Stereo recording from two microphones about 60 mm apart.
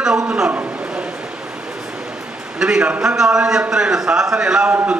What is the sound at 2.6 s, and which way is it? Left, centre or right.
A man's voice, centre.